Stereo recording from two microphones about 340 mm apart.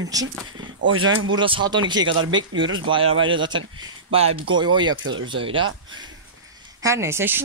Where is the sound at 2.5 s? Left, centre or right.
Right.